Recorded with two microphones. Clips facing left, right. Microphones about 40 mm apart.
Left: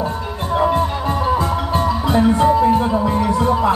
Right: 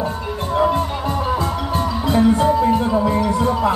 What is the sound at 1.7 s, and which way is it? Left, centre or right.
Music, left.